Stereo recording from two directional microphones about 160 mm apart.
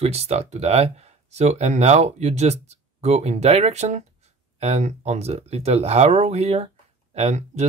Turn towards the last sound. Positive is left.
turn(degrees=-45)  # may be behind; listen again after turning